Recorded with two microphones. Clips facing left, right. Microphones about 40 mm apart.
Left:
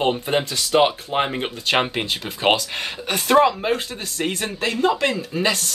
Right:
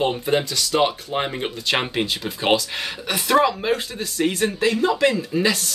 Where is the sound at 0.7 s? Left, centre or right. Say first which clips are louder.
Left 3 dB; centre.